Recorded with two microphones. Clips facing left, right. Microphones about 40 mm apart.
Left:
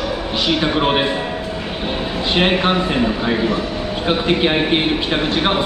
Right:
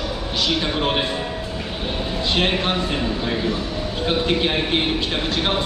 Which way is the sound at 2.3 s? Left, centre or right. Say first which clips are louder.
Left 6 dB; left.